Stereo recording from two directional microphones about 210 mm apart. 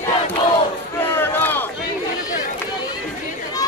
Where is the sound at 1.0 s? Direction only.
10° left (ahead or behind).